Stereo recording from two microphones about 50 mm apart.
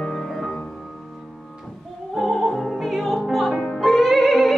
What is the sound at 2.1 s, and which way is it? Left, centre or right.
Music, centre.